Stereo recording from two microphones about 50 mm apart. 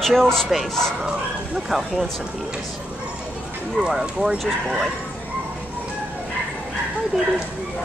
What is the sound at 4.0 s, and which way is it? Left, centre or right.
Speech, centre.